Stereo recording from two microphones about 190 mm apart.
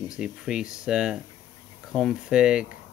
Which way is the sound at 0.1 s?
5° right (ahead or behind).